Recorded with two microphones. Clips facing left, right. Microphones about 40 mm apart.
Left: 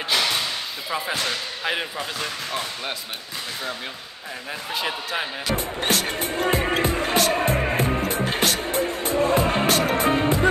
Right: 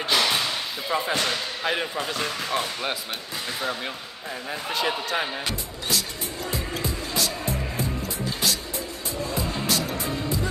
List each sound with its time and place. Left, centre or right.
0.8 s speech: centre
4.7 s speech: centre
5.5 s music: left